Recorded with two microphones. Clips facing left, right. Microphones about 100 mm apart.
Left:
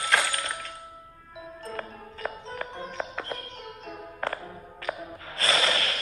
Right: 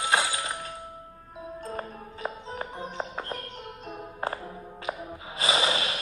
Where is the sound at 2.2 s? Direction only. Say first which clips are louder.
Even; 25° right (ahead or behind).